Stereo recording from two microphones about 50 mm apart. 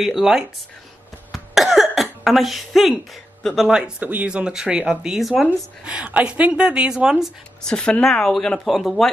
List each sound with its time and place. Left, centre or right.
0.0 s speech: centre
1.5 s cough: centre
3.6 s speech: centre
4.0 s speech: right
4.3 s speech: centre
5.4 s speech: centre
5.9 s speech: right
7.6 s speech: centre
8.0 s speech: centre